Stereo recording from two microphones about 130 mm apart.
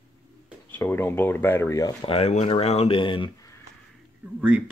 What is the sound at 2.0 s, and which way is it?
Speech, 50° left (ahead or behind).